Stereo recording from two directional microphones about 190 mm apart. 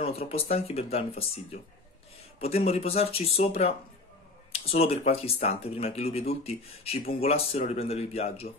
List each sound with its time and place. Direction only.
0.0 s speech: 30° left (ahead or behind)